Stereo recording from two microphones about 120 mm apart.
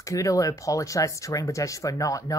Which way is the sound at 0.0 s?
25° left (ahead or behind).